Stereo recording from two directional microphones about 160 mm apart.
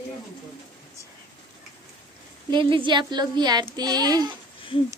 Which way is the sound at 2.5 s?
30° right (ahead or behind).